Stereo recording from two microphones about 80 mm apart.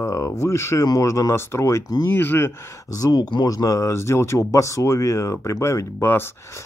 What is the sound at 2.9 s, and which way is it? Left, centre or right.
Speech, left.